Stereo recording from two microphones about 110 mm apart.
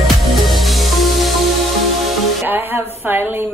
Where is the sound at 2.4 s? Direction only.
20° right (ahead or behind).